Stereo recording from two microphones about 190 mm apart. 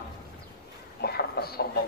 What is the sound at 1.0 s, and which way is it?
Speech, 55° left (ahead or behind).